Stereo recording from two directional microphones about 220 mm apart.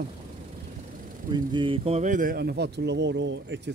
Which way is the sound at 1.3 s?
20° right (ahead or behind).